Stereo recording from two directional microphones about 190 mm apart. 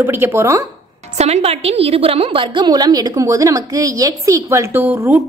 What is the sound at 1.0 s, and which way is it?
A woman's voice, 35° right (ahead or behind).